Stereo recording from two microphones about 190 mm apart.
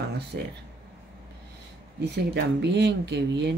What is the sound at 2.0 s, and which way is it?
Speech, 65° right (ahead or behind).